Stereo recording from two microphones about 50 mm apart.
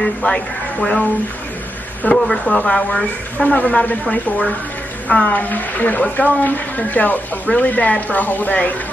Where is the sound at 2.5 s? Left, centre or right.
Centre.